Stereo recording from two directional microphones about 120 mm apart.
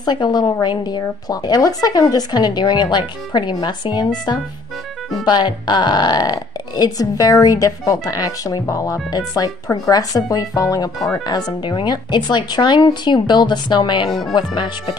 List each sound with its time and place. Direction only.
0.0 s speech: 40° left (ahead or behind)
5.2 s speech: 40° left (ahead or behind)
14.0 s speech: centre (ahead or behind)
14.3 s speech: 40° left (ahead or behind)